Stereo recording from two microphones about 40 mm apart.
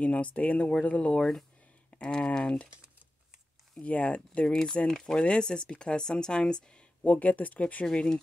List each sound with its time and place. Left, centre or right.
0.0 s speech: left
3.8 s speech: left
4.5 s speech: left
7.1 s speech: left
7.8 s speech: centre